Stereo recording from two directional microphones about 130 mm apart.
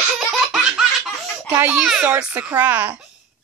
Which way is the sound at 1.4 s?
15° right (ahead or behind).